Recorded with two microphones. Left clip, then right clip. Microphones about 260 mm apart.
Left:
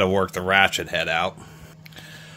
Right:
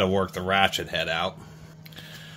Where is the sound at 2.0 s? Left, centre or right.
Centre.